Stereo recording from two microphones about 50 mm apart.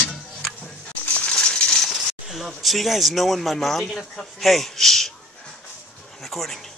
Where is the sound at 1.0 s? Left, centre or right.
Left.